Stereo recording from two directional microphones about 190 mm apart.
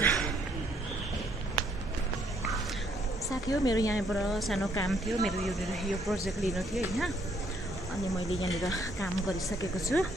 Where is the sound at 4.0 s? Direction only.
Centre (ahead or behind).